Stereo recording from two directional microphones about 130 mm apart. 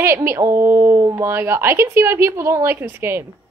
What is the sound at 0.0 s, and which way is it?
A woman's voice, 20° right (ahead or behind).